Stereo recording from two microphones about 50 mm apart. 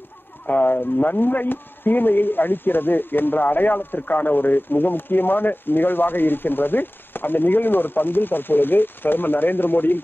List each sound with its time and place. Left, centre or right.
0.5 s speech: left